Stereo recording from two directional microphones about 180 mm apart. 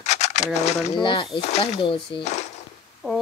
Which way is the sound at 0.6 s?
35° left (ahead or behind).